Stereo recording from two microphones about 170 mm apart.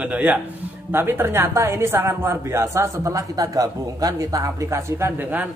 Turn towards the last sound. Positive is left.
turn(degrees=-10)  # may be behind; listen again after turning